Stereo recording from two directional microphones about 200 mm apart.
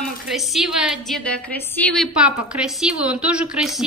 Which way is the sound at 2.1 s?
5° right (ahead or behind).